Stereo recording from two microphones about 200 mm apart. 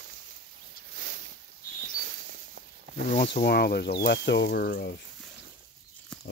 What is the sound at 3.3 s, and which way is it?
Speech, 50° left (ahead or behind).